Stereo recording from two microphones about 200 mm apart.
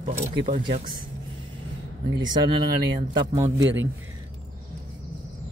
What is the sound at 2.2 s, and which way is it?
Speech, 20° right (ahead or behind).